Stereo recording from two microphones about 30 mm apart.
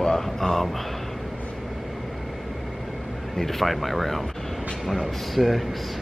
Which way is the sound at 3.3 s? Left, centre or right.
Centre.